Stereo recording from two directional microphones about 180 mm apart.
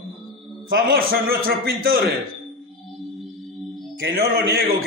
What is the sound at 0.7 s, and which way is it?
A man's voice, 55° right (ahead or behind).